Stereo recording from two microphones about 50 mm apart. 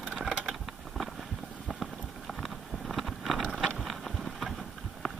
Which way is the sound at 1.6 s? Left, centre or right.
Centre.